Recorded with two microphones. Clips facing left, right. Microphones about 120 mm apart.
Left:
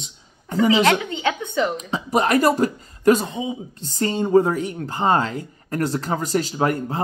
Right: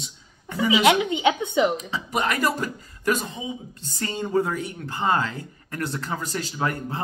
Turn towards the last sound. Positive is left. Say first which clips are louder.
# left 5 dB
turn(degrees=40)  # may be behind; listen again after turning